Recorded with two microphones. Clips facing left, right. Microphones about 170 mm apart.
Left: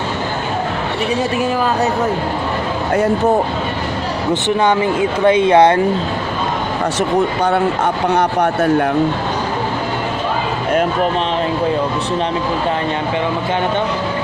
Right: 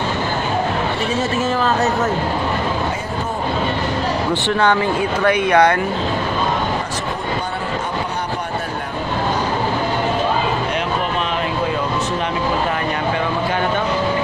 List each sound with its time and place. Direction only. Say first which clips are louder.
4.3 s speech: left 4 dB; 15° left (ahead or behind)
7.5 s a man's voice: left 7 dB; 70° left (ahead or behind)